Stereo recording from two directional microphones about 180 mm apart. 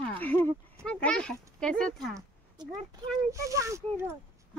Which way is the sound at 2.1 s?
20° right (ahead or behind).